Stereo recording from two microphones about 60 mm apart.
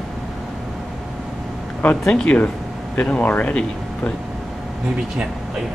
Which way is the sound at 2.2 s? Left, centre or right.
Left.